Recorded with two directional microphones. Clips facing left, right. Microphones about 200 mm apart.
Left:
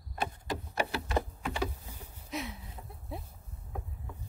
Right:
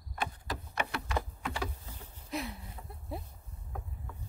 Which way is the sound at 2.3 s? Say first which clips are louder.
Right 1 dB; centre (ahead or behind).